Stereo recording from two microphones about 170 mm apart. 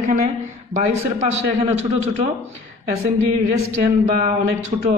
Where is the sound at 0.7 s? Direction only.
40° right (ahead or behind).